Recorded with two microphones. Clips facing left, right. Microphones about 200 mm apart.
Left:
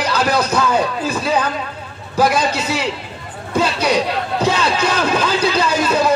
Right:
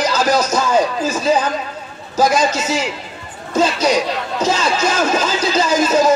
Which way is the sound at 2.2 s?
60° left (ahead or behind).